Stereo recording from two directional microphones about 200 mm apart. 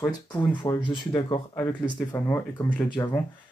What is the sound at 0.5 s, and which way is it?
Speech, 20° left (ahead or behind).